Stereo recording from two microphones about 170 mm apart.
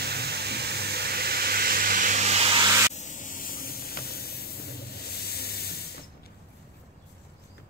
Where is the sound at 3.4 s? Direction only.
60° left (ahead or behind).